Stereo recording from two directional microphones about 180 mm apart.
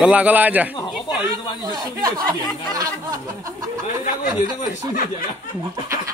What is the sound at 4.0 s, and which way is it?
Speech, 50° left (ahead or behind).